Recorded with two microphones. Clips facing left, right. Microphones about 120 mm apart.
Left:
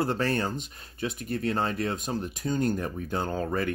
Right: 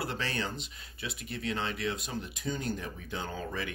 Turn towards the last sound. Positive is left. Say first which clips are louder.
# left 8 dB
turn(degrees=50)  # may be behind; listen again after turning